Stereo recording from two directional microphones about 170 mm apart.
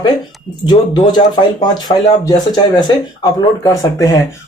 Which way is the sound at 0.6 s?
25° left (ahead or behind).